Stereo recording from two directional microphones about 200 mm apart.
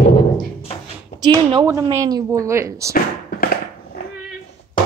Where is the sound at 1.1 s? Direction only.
20° right (ahead or behind).